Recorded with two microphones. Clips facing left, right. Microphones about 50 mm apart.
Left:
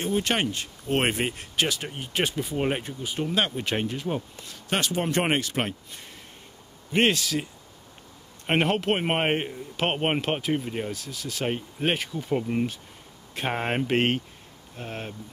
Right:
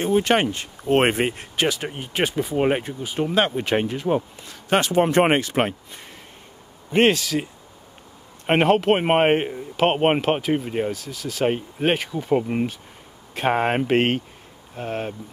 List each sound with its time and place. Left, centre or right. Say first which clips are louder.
0.0 s speech: right 6 dB; right
6.9 s a man's voice: right 5 dB; centre
8.5 s a man's voice: right 6 dB; centre
10.9 s speech: right 5 dB; centre
11.4 s a man's voice: right 6 dB; centre